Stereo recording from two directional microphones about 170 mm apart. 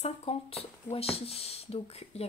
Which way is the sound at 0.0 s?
35° left (ahead or behind).